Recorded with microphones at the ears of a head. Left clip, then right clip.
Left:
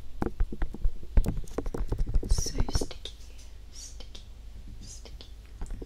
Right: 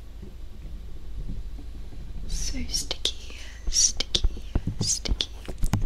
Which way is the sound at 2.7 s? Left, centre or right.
Right.